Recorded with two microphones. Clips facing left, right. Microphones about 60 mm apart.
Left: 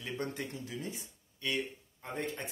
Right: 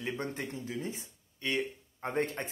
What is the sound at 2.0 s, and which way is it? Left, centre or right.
Speech, right.